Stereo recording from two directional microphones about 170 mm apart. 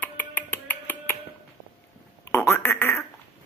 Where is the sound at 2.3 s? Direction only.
15° left (ahead or behind).